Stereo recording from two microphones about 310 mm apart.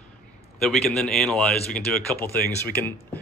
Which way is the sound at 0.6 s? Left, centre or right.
Centre.